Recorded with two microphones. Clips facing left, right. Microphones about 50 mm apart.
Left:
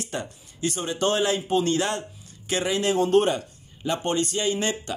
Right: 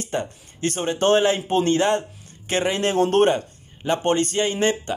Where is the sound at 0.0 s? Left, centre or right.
Right.